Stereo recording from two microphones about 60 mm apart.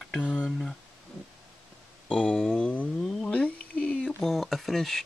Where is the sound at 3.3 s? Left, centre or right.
Left.